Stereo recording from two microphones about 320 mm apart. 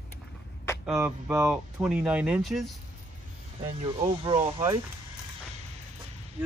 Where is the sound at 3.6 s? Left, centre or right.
Centre.